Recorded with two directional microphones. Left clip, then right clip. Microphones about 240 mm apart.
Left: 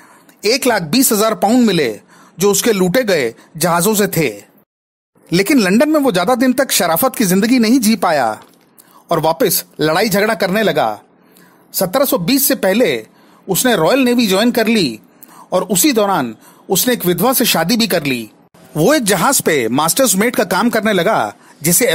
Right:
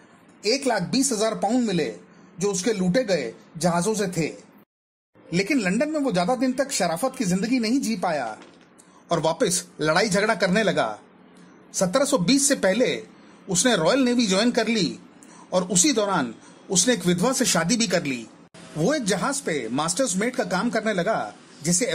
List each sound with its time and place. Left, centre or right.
0.4 s speech: left